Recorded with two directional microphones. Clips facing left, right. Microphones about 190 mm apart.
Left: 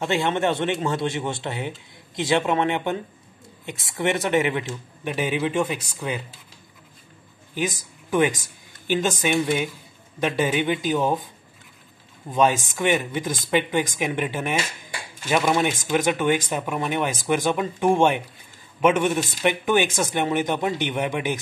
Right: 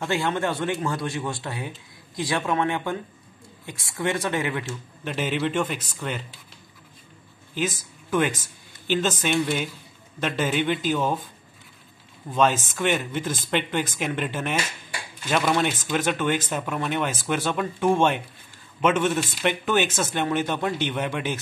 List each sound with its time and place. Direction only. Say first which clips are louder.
0.0 s a man's voice: left 3 dB; 20° left (ahead or behind)
7.5 s a woman's voice: left 1 dB; 15° left (ahead or behind)
12.3 s speech: left 1 dB; 10° left (ahead or behind)